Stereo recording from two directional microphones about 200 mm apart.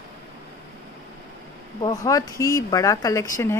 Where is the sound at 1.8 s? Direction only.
15° left (ahead or behind).